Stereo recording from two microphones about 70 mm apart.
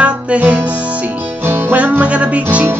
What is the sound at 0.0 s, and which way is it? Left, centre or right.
Music, centre.